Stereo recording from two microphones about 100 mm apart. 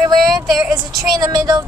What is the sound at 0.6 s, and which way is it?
Speech, 30° right (ahead or behind).